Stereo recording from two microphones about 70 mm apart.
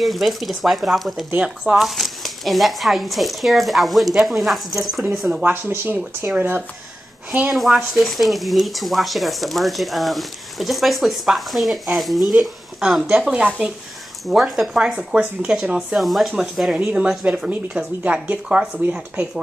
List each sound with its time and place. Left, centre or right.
0.0 s speech: centre
5.4 s speech: right
7.5 s speech: centre
13.2 s speech: centre
14.2 s speech: centre
16.0 s speech: centre
17.5 s speech: centre